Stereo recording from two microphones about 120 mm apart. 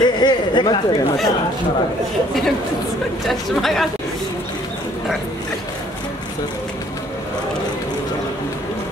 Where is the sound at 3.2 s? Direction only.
Centre (ahead or behind).